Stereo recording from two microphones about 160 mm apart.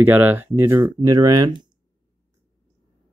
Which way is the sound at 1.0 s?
25° right (ahead or behind).